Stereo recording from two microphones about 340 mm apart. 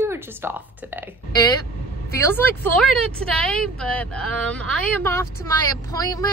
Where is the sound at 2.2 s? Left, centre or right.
Centre.